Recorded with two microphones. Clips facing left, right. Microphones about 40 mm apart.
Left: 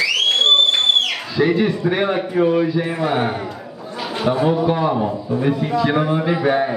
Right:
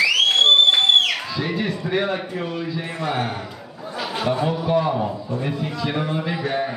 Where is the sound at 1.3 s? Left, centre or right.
Centre.